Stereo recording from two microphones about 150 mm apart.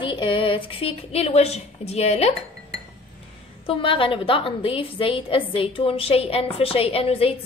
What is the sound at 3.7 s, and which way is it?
A woman's voice, 35° left (ahead or behind).